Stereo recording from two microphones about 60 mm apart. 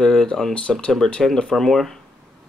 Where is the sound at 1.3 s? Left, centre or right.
Centre.